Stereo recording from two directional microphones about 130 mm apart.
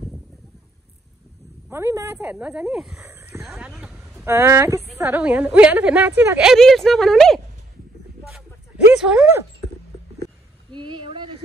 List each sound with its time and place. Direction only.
1.7 s a woman's voice: 20° right (ahead or behind); by 3.0 s 5° right (ahead or behind)
3.0 s horse: 20° right (ahead or behind)
3.4 s horse: centre (ahead or behind)
4.2 s a woman's voice: 20° right (ahead or behind)
6.4 s speech: centre (ahead or behind)
8.2 s a sound: 5° right (ahead or behind)
10.7 s speech: 40° right (ahead or behind)